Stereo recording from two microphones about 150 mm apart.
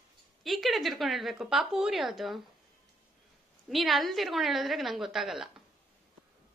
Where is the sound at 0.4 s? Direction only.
Centre (ahead or behind).